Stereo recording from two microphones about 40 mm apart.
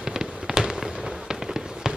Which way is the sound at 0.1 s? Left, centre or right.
Centre.